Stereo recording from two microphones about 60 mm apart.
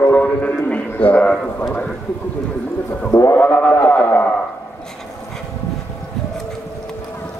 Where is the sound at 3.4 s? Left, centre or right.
Left.